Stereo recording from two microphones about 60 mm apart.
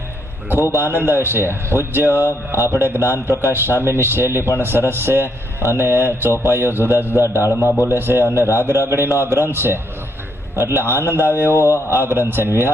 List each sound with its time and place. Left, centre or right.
0.7 s a man's voice: right
2.2 s speech: left
2.7 s a man's voice: right
7.2 s a man's voice: left
7.9 s a man's voice: right
11.5 s speech: left
11.9 s a man's voice: right